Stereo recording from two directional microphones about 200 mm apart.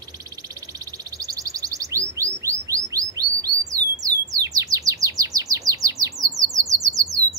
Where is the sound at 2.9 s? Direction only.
15° right (ahead or behind).